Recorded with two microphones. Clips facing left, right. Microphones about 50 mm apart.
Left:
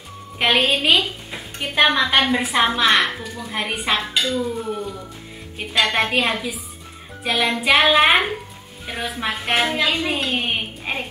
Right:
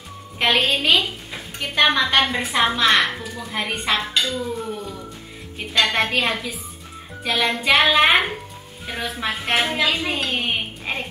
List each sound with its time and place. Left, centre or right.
0.4 s a woman's voice: centre